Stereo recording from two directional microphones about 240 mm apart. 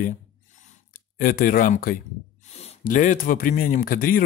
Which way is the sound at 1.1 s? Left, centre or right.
Left.